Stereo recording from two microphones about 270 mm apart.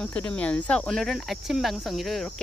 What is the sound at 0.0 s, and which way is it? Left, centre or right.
Speech, centre.